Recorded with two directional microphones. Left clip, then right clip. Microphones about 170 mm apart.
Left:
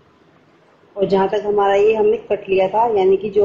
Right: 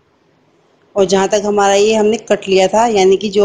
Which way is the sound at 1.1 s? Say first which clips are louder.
Right 1 dB; 55° right (ahead or behind).